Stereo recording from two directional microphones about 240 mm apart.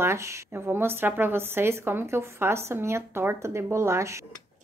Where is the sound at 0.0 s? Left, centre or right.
Centre.